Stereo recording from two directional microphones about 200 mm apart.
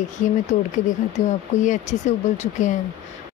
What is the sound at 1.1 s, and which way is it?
Speech, 35° left (ahead or behind).